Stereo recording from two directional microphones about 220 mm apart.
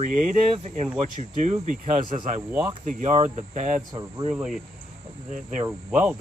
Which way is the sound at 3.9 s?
20° right (ahead or behind).